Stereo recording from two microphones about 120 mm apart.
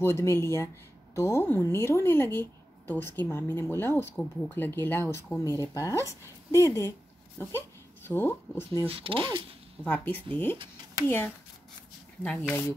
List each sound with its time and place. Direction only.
0.0 s a woman's voice: 20° left (ahead or behind)
4.2 s a woman's voice: 5° left (ahead or behind)
8.8 s speech: 50° right (ahead or behind)
9.8 s a woman's voice: 15° left (ahead or behind)